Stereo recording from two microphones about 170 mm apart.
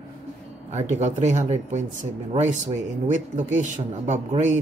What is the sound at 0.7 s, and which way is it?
Speech, 45° right (ahead or behind).